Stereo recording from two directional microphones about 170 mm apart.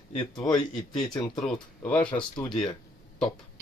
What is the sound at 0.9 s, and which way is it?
Speech, 5° left (ahead or behind).